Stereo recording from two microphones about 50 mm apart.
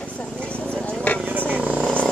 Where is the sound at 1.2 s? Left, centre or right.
Right.